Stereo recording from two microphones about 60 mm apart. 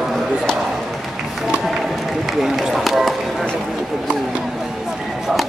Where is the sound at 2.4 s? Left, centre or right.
Centre.